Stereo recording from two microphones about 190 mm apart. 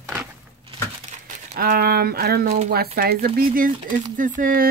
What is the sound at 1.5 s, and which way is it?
Speech, 55° right (ahead or behind).